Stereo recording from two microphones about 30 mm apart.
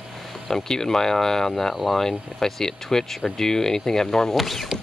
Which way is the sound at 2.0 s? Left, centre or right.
Centre.